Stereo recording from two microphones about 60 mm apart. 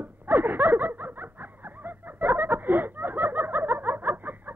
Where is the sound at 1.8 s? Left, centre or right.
Right.